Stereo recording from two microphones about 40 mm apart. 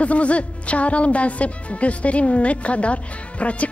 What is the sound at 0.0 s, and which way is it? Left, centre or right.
Speech, left.